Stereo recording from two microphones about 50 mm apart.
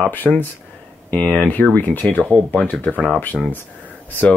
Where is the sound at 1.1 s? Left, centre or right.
Left.